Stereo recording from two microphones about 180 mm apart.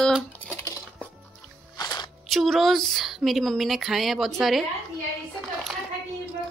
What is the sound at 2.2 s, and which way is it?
A woman's voice, centre (ahead or behind).